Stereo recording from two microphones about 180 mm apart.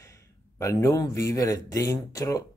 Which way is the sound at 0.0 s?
15° left (ahead or behind).